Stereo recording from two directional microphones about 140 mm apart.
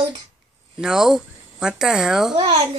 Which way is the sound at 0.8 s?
5° right (ahead or behind).